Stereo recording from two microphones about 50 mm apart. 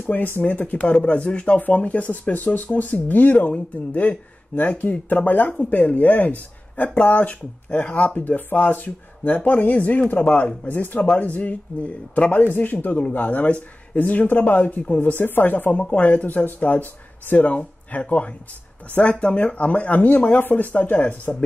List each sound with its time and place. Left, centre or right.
0.0 s speech: left
10.7 s speech: left
15.1 s speech: left
21.0 s speech: left